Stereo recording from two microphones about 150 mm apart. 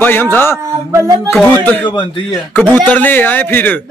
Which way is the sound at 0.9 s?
20° right (ahead or behind).